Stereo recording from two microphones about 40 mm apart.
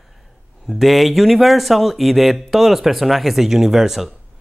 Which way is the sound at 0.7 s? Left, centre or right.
Centre.